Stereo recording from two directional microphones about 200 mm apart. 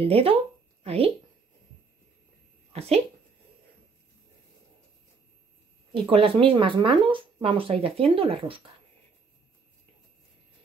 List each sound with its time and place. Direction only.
0.0 s speech: 30° right (ahead or behind)
2.7 s speech: 30° right (ahead or behind)
5.9 s speech: 30° right (ahead or behind)